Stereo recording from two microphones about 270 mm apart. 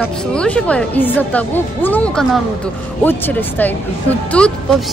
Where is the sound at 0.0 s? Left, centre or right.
Centre.